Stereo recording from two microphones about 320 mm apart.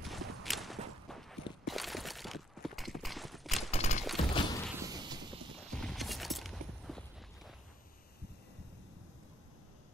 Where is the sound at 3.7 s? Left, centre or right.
Left.